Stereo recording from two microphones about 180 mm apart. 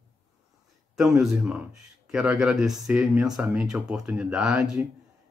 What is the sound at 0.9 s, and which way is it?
Speech, centre (ahead or behind).